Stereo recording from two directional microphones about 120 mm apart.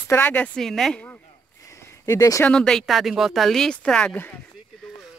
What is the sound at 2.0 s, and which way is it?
Speech, 25° left (ahead or behind).